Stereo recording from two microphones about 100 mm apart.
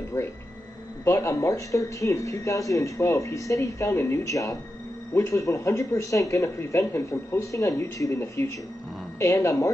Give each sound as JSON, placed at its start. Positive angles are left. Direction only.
{"t": 0.1, "sound": "speech", "side_deg": 30}